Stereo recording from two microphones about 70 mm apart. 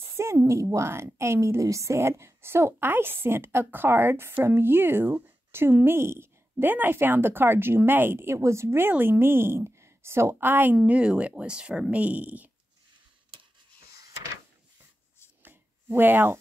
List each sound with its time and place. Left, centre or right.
0.0 s a woman's voice: right
10.8 s speech: centre
15.4 s a sound: right